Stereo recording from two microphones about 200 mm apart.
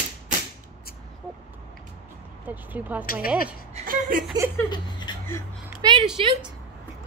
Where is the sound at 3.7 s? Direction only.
40° right (ahead or behind).